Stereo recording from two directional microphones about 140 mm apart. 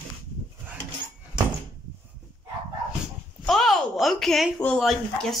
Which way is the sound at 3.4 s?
Centre (ahead or behind).